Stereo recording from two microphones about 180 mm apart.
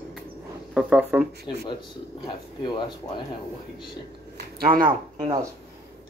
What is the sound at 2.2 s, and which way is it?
Speech, 25° left (ahead or behind).